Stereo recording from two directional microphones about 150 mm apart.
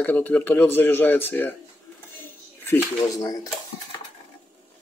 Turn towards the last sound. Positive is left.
turn(degrees=25)  # may be behind; listen again after turning